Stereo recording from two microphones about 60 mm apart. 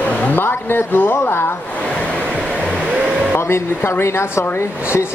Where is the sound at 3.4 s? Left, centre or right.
Left.